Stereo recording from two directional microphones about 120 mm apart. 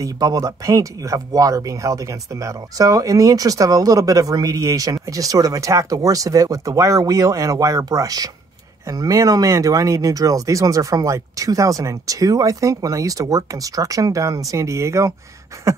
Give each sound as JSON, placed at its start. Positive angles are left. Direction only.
{"t": 0.0, "sound": "speech", "side_deg": -30}